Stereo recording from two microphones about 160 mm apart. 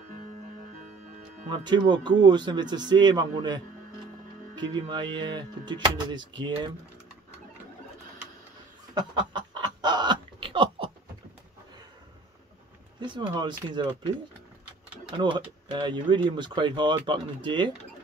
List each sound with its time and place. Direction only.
1.5 s speech: 30° right (ahead or behind)
9.5 s chicken: 25° right (ahead or behind)
13.0 s speech: 30° right (ahead or behind)
15.1 s speech: 30° right (ahead or behind)